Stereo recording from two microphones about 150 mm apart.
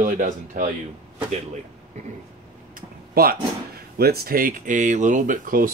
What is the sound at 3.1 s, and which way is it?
Speech, 85° right.